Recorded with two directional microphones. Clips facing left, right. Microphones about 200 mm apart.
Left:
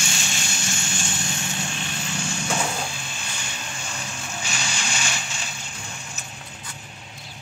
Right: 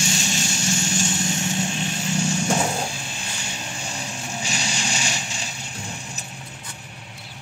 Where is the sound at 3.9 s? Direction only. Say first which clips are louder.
Right 3 dB; 35° right (ahead or behind).